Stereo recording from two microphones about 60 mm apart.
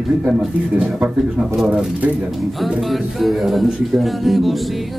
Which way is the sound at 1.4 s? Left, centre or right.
Centre.